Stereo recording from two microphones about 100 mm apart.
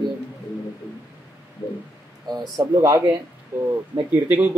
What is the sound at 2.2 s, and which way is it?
Speech, 40° right (ahead or behind).